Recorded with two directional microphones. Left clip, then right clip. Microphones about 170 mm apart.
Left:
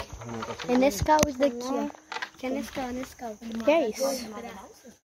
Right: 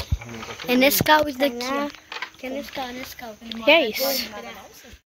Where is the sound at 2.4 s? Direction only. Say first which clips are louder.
Right 2 dB; 65° left (ahead or behind).